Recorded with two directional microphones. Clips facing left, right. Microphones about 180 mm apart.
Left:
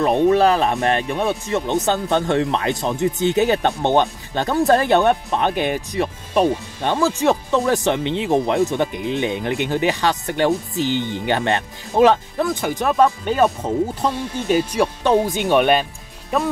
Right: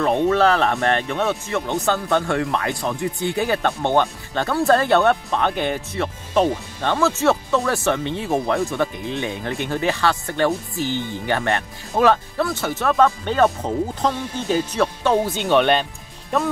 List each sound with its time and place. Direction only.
0.0 s speech: 15° left (ahead or behind)